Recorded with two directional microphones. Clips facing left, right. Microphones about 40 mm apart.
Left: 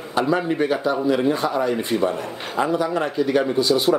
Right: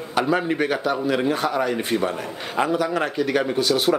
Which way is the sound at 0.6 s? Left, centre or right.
Right.